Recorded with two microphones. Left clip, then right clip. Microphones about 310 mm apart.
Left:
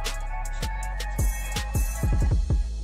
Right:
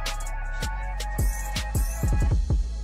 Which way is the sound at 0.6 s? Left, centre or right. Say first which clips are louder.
Right 3 dB; centre.